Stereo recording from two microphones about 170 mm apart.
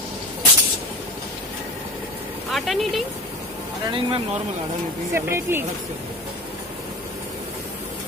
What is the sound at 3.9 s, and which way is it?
Speech, 30° right (ahead or behind).